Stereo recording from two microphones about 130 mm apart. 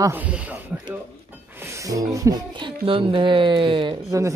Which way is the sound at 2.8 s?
45° right (ahead or behind).